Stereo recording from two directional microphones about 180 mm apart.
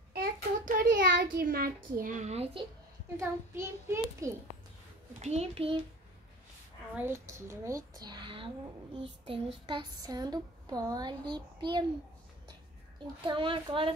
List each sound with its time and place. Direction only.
0.1 s child singing: 55° right (ahead or behind)
1.3 s a woman's voice: 55° right (ahead or behind); by 2.6 s 35° right (ahead or behind)
3.2 s a child's voice: 15° right (ahead or behind)
5.2 s a child's voice: 35° right (ahead or behind)
7.0 s a child's voice: 15° right (ahead or behind)
9.0 s child singing: 30° right (ahead or behind)
13.0 s child singing: 30° right (ahead or behind)